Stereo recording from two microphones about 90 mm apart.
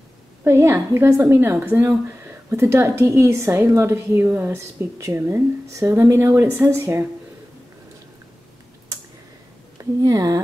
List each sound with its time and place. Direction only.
0.4 s a woman's voice: 30° right (ahead or behind)
10.0 s speech: 45° right (ahead or behind)